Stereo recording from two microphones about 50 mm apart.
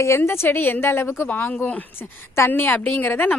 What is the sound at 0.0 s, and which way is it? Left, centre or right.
Speech, left.